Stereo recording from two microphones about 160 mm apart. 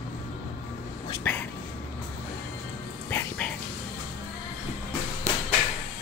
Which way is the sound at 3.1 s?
15° left (ahead or behind).